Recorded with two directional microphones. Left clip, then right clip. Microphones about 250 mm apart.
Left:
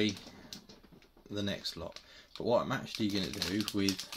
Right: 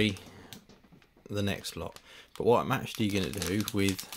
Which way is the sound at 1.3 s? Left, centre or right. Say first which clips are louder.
Right 3 dB; right.